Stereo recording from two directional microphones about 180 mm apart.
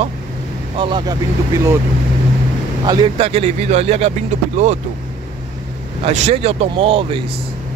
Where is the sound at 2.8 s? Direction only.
30° right (ahead or behind).